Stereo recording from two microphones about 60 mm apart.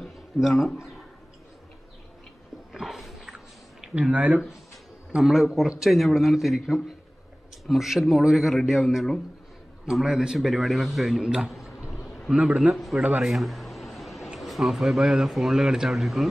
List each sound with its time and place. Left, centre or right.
0.0 s speech: centre
2.7 s a sound: centre
4.0 s speech: centre
5.1 s a man's voice: centre
10.0 s a man's voice: centre
11.9 s a sound: centre
12.3 s a man's voice: centre
12.7 s a man's voice: centre